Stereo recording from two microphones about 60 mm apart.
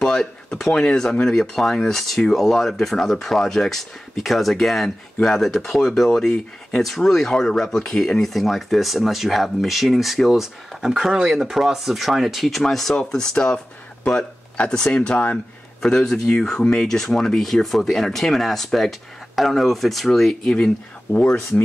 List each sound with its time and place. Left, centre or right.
0.0 s speech: centre